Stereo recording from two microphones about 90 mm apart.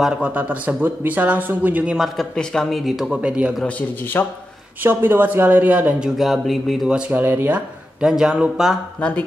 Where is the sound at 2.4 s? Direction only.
10° left (ahead or behind); by 3.6 s 10° right (ahead or behind).